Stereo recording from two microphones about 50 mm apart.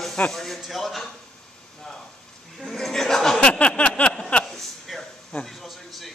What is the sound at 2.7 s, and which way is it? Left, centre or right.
Speech, centre.